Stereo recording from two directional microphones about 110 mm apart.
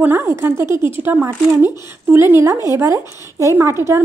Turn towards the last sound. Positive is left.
turn(degrees=-25)  # may be behind; listen again after turning